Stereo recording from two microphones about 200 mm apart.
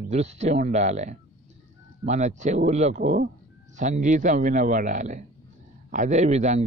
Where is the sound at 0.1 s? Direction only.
35° right (ahead or behind).